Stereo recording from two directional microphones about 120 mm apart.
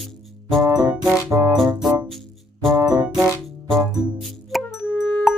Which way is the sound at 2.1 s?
Centre (ahead or behind).